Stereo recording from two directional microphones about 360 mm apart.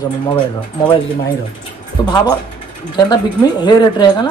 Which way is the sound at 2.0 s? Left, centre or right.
Centre.